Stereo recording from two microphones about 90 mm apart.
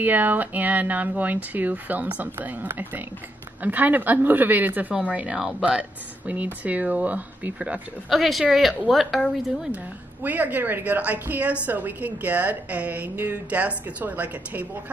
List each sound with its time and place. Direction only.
0.0 s a woman's voice: 20° right (ahead or behind)
8.1 s speech: centre (ahead or behind)
10.2 s a woman's voice: 20° right (ahead or behind)